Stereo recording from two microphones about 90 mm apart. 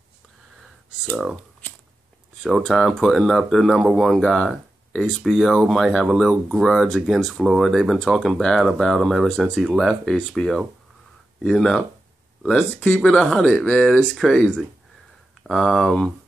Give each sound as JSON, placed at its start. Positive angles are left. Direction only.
{"t": 2.4, "sound": "speech", "side_deg": 0}